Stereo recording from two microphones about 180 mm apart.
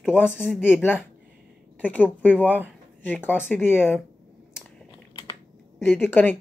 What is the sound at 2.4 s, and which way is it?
Speech, 10° right (ahead or behind).